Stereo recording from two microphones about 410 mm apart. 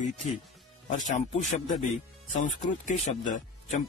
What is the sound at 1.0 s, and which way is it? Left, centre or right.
Speech, centre.